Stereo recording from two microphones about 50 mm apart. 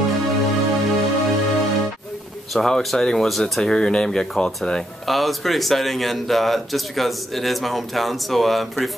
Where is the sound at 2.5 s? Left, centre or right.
Centre.